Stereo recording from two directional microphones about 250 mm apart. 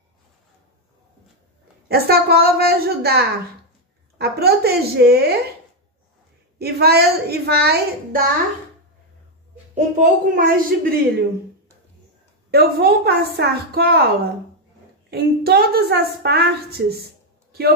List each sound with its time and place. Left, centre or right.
1.9 s a woman's voice: right
6.6 s a woman's voice: right
9.8 s a woman's voice: right
12.4 s a woman's voice: right
15.0 s a woman's voice: right